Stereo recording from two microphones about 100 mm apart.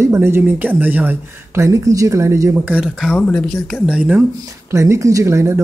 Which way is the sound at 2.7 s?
5° right (ahead or behind).